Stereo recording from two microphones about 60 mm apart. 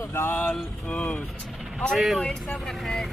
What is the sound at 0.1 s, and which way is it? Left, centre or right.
Music, left.